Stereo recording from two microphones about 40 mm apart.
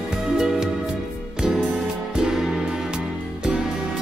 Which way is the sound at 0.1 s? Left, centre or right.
Centre.